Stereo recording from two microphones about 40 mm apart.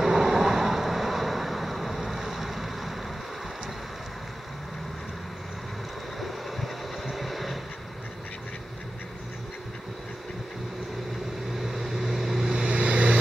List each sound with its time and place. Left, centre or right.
0.0 s vehicle: centre
6.2 s vehicle: centre
11.7 s vehicle: centre
12.5 s vehicle: right